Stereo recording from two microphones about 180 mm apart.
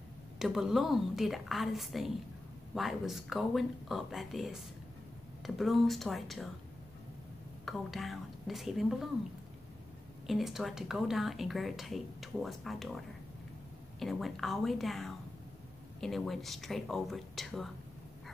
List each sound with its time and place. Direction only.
0.4 s a woman's voice: centre (ahead or behind)
5.6 s a woman's voice: centre (ahead or behind)
7.6 s a woman's voice: centre (ahead or behind)
10.2 s a woman's voice: centre (ahead or behind)